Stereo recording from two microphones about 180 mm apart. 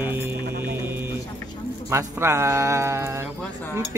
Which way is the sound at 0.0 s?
10° right (ahead or behind).